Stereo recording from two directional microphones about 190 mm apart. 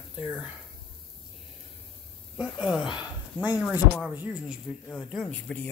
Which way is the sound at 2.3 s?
Centre (ahead or behind).